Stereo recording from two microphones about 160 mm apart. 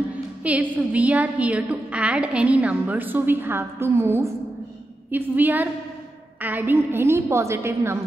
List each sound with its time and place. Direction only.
0.4 s a woman's voice: 10° right (ahead or behind)